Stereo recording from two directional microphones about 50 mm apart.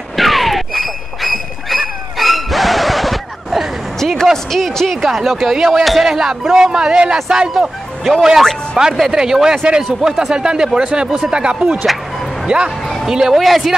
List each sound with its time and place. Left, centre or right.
0.1 s a sound: centre
4.0 s a man's voice: centre
13.0 s a man's voice: centre